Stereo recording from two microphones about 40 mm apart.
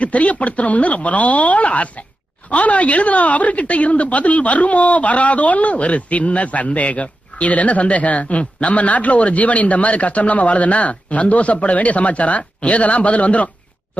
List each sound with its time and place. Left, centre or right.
0.0 s a woman's voice: left